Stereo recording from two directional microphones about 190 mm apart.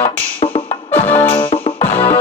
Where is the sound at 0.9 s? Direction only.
10° left (ahead or behind).